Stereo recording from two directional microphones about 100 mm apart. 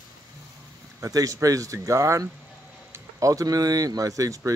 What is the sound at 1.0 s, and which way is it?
Speech, 35° right (ahead or behind).